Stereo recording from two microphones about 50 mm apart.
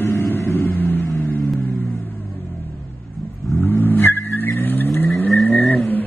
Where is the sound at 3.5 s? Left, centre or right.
Left.